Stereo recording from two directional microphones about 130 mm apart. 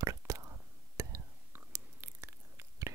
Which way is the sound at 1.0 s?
25° right (ahead or behind).